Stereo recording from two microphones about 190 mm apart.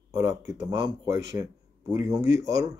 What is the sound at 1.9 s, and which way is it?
Speech, 15° right (ahead or behind).